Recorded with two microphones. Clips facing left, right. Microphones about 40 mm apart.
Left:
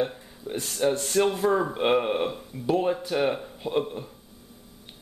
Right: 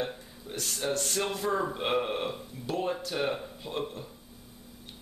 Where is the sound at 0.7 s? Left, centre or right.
Centre.